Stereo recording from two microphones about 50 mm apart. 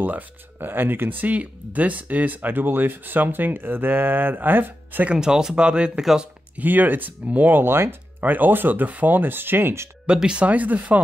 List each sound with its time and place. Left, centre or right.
0.0 s speech: right
5.1 s speech: centre
6.5 s speech: right
7.5 s speech: right
8.2 s speech: right
10.0 s speech: centre
10.4 s speech: right